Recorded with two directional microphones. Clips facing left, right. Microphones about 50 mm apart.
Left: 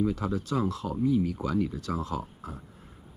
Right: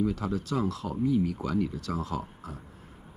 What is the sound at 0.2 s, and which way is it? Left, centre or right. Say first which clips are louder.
Speech: left 1 dB; left.